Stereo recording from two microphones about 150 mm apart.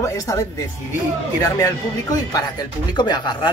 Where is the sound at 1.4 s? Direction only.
25° left (ahead or behind).